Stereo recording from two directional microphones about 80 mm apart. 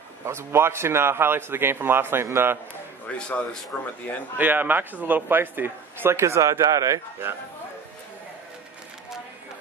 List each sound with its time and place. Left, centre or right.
0.2 s speech: right
3.2 s speech: centre
4.4 s speech: right